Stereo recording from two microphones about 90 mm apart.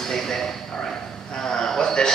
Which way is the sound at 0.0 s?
5° left (ahead or behind).